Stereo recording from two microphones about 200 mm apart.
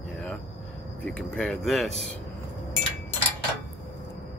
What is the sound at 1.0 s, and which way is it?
Speech, 5° left (ahead or behind).